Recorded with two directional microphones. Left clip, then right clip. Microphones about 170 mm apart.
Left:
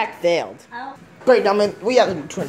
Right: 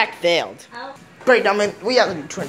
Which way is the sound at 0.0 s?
10° left (ahead or behind).